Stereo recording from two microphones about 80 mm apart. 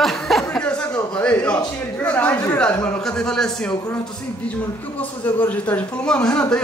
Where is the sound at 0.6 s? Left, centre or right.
Centre.